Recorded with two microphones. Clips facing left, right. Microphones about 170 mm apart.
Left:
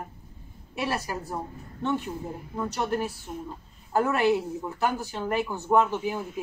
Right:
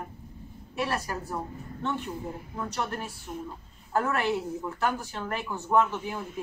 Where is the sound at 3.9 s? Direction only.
15° left (ahead or behind).